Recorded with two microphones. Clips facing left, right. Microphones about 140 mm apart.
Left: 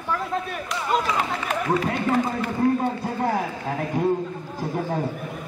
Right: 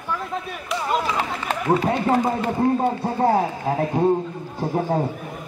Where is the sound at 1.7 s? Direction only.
30° right (ahead or behind).